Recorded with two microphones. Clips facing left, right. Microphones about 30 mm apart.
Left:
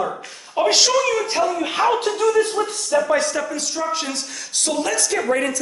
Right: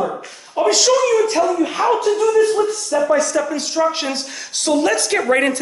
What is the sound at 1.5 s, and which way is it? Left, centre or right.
Speech, left.